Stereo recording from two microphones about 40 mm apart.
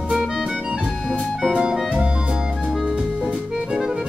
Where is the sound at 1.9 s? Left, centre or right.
Right.